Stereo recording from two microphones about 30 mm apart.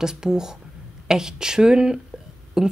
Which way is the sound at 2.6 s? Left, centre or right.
Centre.